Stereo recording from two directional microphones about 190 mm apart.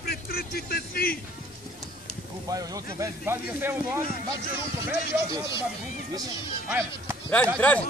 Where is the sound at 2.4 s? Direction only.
20° right (ahead or behind).